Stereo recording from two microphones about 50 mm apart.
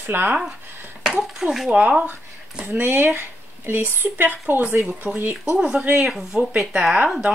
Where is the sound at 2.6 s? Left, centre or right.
Right.